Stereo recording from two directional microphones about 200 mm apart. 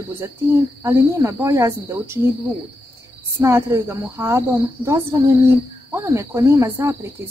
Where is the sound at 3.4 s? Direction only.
10° right (ahead or behind).